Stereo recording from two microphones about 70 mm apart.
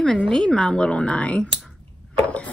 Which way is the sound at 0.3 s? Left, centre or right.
Centre.